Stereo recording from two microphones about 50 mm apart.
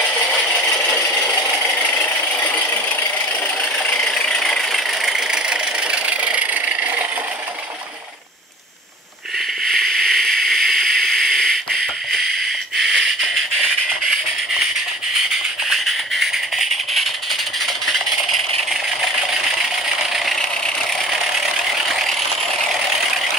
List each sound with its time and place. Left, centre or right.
4.0 s vehicle: centre
5.0 s vehicle: centre; by 7.1 s right
9.7 s a sound: centre
15.1 s music: centre